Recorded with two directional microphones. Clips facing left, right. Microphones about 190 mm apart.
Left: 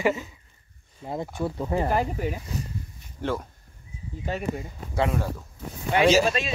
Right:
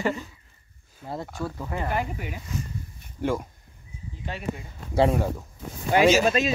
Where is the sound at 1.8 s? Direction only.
35° left (ahead or behind).